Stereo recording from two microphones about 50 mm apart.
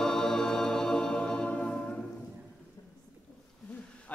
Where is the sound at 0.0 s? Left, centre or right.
Centre.